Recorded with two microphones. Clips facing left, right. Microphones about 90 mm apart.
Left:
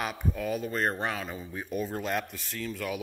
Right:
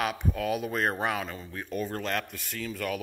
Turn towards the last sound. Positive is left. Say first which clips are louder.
# right 1 dB
turn(degrees=5)  # may be behind; listen again after turning